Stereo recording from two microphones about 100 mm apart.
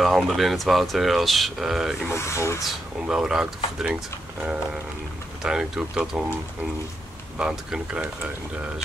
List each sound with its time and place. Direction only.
0.0 s speech: centre (ahead or behind)
2.0 s speech: 30° left (ahead or behind)
2.6 s speech: 5° right (ahead or behind)
7.3 s speech: 10° right (ahead or behind)